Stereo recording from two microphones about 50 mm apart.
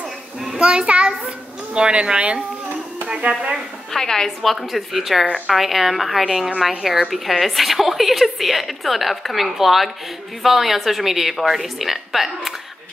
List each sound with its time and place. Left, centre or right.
0.6 s speech: right
3.9 s a woman's voice: centre